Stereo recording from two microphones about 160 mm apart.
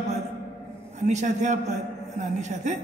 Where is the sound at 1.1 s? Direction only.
50° right (ahead or behind).